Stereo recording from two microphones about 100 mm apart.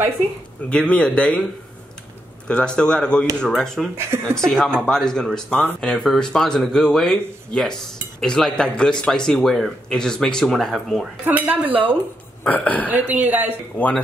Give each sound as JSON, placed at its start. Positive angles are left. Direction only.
{"t": 0.7, "sound": "speech", "side_deg": 10}
{"t": 2.4, "sound": "speech", "side_deg": 10}
{"t": 4.1, "sound": "speech", "side_deg": -25}
{"t": 4.5, "sound": "speech", "side_deg": 5}
{"t": 11.2, "sound": "speech", "side_deg": -15}
{"t": 12.4, "sound": "speech", "side_deg": 15}
{"t": 12.9, "sound": "speech", "side_deg": -15}
{"t": 13.7, "sound": "speech", "side_deg": 15}